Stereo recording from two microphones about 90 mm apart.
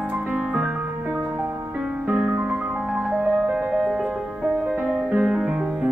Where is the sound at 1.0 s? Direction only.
20° right (ahead or behind).